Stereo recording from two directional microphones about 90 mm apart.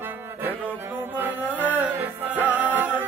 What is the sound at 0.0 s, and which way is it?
Music, 20° right (ahead or behind).